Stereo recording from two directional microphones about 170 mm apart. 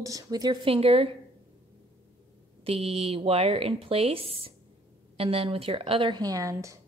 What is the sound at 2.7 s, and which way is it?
A woman's voice, 35° right (ahead or behind).